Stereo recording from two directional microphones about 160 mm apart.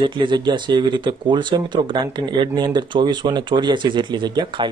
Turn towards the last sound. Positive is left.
turn(degrees=-30)  # may be behind; listen again after turning